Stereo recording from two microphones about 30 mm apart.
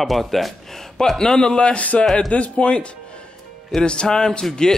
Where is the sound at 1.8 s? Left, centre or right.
Left.